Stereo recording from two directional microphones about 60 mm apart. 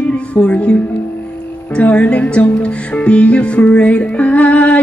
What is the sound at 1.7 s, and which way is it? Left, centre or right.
Music, left.